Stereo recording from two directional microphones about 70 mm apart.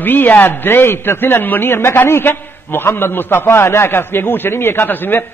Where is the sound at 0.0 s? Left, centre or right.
Left.